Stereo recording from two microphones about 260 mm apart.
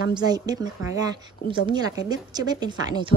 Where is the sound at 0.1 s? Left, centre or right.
Centre.